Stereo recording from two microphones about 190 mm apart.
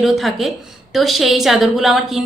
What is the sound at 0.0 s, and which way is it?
A woman's voice, centre (ahead or behind).